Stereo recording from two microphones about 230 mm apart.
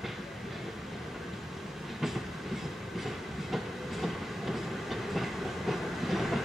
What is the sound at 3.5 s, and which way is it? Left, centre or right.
Train, centre.